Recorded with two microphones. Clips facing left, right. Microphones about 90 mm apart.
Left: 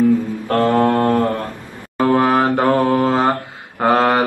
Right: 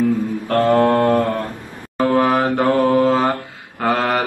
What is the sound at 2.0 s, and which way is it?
Mantra, 20° left (ahead or behind).